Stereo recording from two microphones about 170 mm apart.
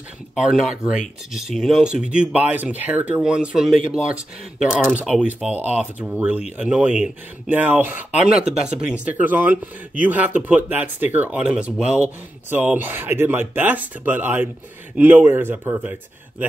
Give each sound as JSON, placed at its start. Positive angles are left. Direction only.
{"t": 0.4, "sound": "speech", "side_deg": -5}